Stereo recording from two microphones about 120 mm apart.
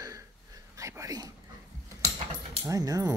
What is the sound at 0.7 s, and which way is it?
Whispering, 25° right (ahead or behind).